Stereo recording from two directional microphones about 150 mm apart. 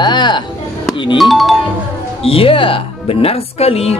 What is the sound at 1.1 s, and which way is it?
Speech, centre (ahead or behind).